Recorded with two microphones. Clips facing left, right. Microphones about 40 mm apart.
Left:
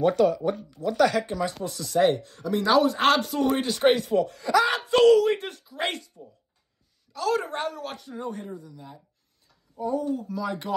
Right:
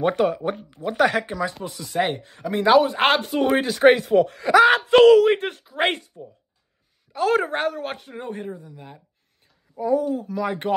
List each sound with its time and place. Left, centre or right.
0.0 s speech: right
1.6 s speech: right
3.5 s speech: right
7.1 s speech: right
9.8 s speech: right
10.0 s speech: right